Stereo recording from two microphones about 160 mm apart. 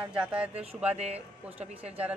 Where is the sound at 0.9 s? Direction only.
45° right (ahead or behind).